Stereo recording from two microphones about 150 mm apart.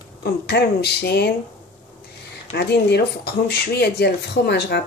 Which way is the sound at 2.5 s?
90° left.